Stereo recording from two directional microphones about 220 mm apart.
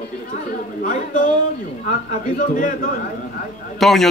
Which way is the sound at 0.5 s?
40° left (ahead or behind).